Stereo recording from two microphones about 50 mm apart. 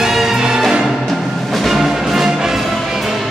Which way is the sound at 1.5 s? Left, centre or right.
Centre.